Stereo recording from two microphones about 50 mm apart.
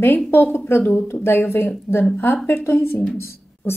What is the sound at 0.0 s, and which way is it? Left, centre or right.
A woman's voice, left.